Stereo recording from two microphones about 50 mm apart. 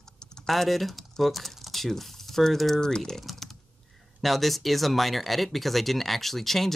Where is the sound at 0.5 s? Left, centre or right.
Centre.